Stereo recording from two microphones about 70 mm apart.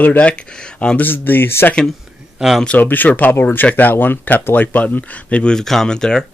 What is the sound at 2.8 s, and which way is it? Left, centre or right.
Speech, left.